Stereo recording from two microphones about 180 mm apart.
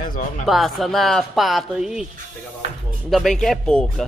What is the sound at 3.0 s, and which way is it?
Speech, centre (ahead or behind).